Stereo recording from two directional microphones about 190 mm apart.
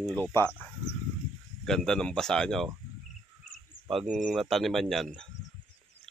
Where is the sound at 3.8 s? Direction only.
Centre (ahead or behind).